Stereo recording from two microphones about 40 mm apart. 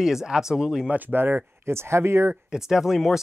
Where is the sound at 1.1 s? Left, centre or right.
Right.